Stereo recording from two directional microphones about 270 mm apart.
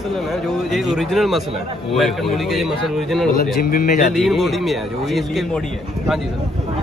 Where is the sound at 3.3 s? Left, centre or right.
Left.